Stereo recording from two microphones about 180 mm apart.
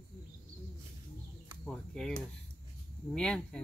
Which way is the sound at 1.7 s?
5° left (ahead or behind).